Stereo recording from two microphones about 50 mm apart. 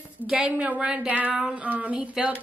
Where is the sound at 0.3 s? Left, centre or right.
Right.